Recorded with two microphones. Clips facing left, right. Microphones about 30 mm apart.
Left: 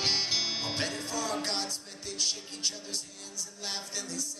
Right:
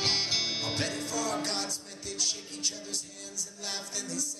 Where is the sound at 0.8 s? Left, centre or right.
Centre.